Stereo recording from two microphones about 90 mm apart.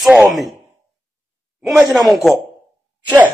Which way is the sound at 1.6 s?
Centre (ahead or behind).